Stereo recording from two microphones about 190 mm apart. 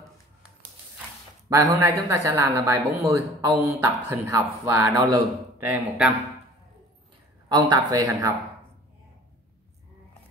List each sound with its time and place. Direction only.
1.5 s a woman's voice: 15° right (ahead or behind)
7.4 s speech: 20° right (ahead or behind)